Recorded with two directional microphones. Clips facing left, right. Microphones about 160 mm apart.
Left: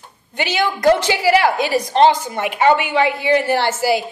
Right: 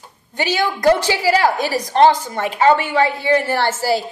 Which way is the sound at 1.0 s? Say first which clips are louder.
Left 1 dB; 15° left (ahead or behind).